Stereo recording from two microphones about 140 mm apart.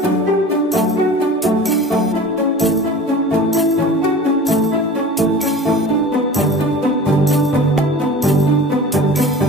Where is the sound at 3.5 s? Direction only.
Centre (ahead or behind).